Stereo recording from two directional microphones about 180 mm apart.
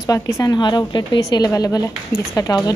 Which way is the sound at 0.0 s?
20° left (ahead or behind).